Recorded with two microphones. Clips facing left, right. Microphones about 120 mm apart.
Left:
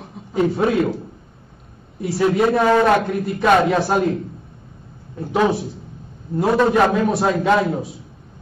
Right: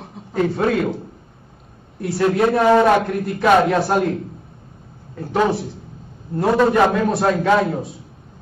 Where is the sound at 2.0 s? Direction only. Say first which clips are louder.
Even; centre (ahead or behind).